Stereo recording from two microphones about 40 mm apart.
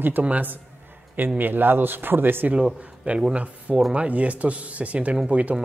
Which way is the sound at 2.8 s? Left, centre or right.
Right.